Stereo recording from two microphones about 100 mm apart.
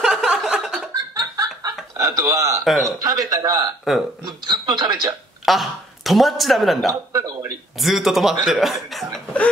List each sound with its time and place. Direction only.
0.0 s a sound: 5° right (ahead or behind)
1.1 s snicker: 35° right (ahead or behind)
2.1 s a man's voice: 30° right (ahead or behind)
2.6 s speech: centre (ahead or behind)
3.0 s a man's voice: 35° right (ahead or behind)
5.4 s speech: centre (ahead or behind)
7.1 s a man's voice: 30° right (ahead or behind)
7.8 s speech: centre (ahead or behind)